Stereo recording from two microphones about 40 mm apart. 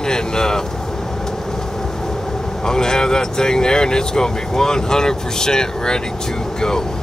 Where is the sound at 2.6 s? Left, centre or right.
Centre.